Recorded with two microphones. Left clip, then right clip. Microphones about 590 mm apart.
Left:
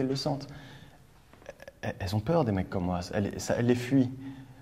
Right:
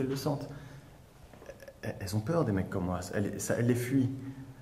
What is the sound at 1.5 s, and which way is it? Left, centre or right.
Speech, left.